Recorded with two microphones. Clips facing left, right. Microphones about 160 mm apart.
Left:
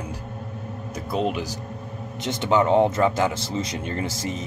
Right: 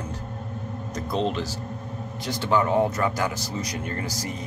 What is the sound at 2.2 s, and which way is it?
Speech, 20° left (ahead or behind).